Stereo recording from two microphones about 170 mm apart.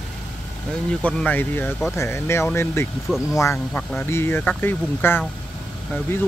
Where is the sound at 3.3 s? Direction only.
15° left (ahead or behind).